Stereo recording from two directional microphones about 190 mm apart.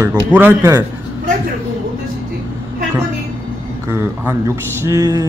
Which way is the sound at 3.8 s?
15° right (ahead or behind).